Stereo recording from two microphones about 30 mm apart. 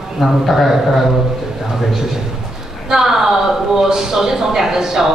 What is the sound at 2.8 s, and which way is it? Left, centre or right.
A man's voice, centre.